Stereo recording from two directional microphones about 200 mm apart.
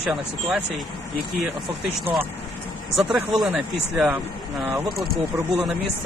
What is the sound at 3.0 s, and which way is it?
Speech, centre (ahead or behind).